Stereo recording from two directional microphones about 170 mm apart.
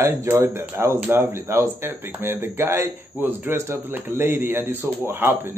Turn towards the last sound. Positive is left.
turn(degrees=-15)  # may be behind; listen again after turning